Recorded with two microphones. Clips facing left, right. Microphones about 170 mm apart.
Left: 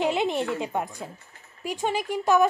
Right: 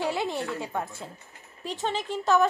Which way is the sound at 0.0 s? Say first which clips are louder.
Left 4 dB; 20° left (ahead or behind).